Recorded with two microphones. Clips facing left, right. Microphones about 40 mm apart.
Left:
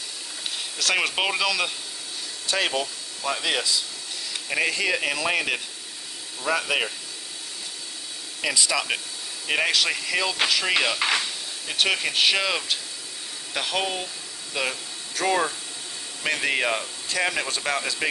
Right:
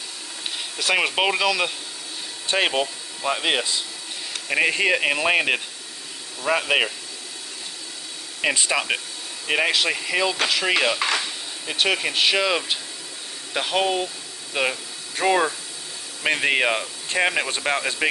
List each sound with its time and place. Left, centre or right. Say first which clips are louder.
0.6 s speech: right 2 dB; centre
2.4 s speech: right 3 dB; right
8.4 s speech: right 3 dB; right
9.5 s speech: right 2 dB; centre
11.0 s stir: even; centre
11.6 s speech: right 2 dB; centre
15.1 s speech: right 3 dB; right